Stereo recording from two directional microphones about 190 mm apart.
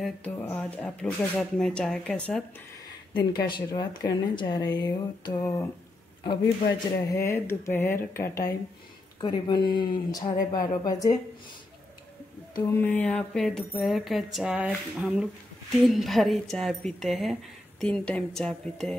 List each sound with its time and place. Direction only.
0.0 s a woman's voice: 10° left (ahead or behind)
3.4 s speech: 25° left (ahead or behind)
12.8 s a woman's voice: 10° left (ahead or behind)